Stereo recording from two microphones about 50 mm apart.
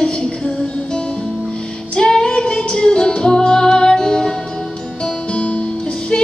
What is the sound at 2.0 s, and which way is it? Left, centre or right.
Music, centre.